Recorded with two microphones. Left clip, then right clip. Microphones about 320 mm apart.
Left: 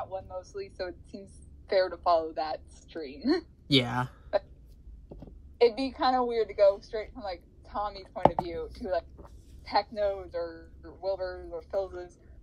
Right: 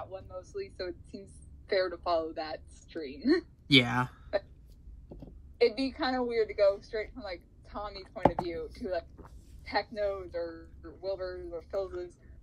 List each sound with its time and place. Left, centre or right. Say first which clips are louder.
0.0 s a woman's voice: left 5 dB; centre
3.7 s speech: right 2 dB; right
5.6 s a woman's voice: left 3 dB; centre
9.2 s a sound: left 1 dB; centre
9.9 s a woman's voice: left 3 dB; centre